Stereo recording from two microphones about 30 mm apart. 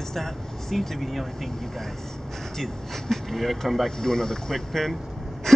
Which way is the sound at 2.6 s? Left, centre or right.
Centre.